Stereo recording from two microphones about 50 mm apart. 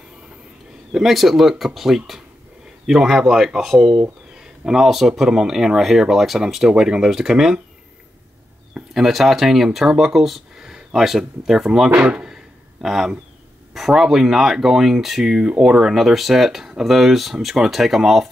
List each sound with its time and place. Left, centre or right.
0.9 s speech: centre
8.9 s speech: centre
12.0 s a man's voice: right
12.8 s speech: centre